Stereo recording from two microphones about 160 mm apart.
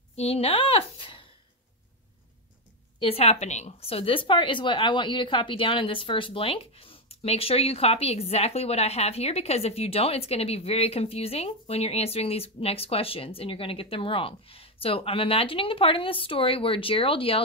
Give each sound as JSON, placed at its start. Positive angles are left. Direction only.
{"t": 0.1, "sound": "a woman's voice", "side_deg": 40}
{"t": 3.0, "sound": "a woman's voice", "side_deg": 35}